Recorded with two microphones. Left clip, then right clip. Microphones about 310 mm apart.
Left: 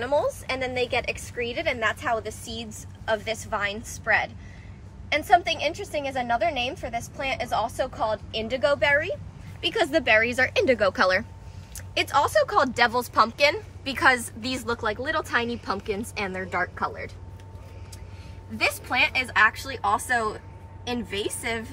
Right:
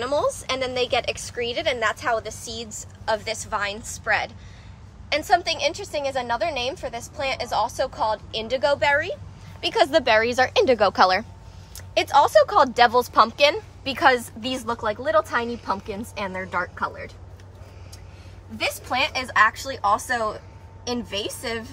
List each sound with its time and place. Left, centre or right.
0.0 s a woman's voice: centre
18.9 s a woman's voice: centre